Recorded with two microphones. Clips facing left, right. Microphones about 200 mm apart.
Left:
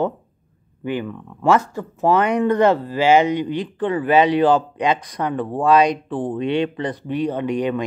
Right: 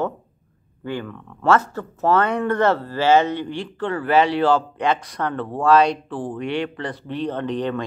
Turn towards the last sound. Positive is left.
turn(degrees=15)  # may be behind; listen again after turning